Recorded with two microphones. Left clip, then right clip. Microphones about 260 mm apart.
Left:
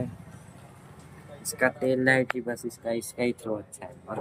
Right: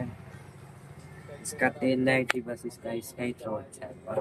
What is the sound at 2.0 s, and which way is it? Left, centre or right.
Speech, left.